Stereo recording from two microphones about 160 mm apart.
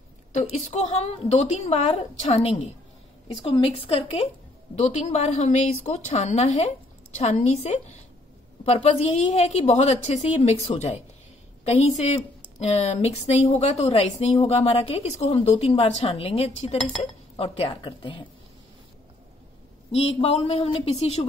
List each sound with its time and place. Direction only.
0.3 s a woman's voice: 45° left (ahead or behind); by 18.2 s 30° left (ahead or behind)
19.9 s a woman's voice: 40° left (ahead or behind)